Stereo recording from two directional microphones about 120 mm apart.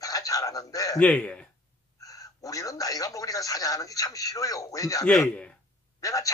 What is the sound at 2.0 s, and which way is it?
A man's voice, 30° left (ahead or behind).